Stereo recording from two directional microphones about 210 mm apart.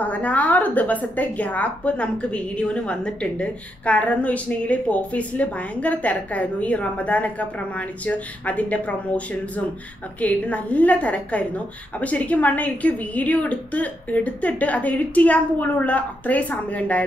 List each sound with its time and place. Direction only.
0.0 s a woman's voice: 5° left (ahead or behind)
10.2 s a woman's voice: 5° left (ahead or behind)